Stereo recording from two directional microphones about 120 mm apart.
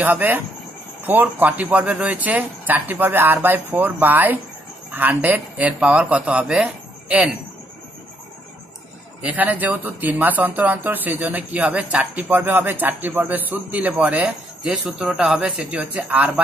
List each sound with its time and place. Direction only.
0.0 s speech: 15° right (ahead or behind)
9.2 s speech: 15° right (ahead or behind)